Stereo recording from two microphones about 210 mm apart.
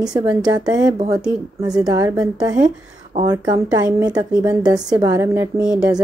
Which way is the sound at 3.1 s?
35° right (ahead or behind).